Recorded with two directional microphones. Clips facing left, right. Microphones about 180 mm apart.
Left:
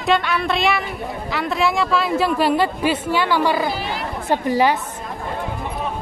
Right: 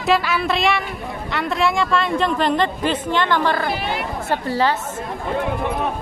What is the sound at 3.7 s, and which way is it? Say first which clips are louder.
Speech: right 2 dB; 60° right (ahead or behind).